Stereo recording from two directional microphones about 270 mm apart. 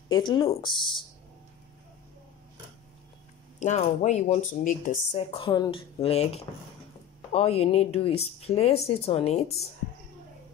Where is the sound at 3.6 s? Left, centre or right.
Left.